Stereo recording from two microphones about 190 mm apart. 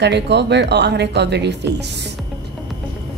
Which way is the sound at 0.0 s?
65° right (ahead or behind).